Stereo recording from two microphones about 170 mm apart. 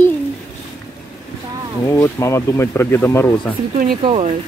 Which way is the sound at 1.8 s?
15° left (ahead or behind).